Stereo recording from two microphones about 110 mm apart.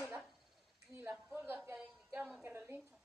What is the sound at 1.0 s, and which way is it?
Speech, 20° right (ahead or behind).